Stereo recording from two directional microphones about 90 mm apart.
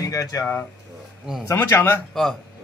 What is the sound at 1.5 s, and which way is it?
Speech, 25° left (ahead or behind).